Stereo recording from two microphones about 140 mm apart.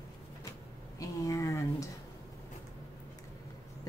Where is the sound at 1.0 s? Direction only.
25° left (ahead or behind).